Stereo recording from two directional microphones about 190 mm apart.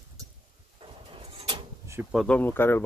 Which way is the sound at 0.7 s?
25° right (ahead or behind).